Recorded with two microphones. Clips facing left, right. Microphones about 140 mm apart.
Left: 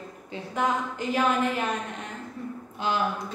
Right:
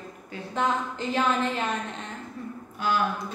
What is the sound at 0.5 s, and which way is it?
A woman's voice, 10° left (ahead or behind).